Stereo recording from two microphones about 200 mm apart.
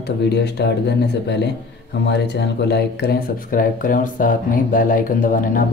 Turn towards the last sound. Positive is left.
turn(degrees=45)  # may be behind; listen again after turning